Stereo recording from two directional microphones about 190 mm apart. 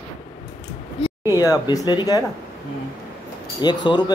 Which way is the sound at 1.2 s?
10° right (ahead or behind).